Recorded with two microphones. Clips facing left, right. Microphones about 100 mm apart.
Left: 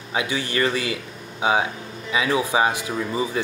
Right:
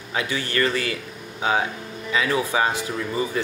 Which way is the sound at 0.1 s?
15° left (ahead or behind).